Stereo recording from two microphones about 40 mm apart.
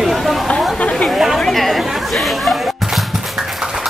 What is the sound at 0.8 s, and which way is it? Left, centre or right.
Chatter, left.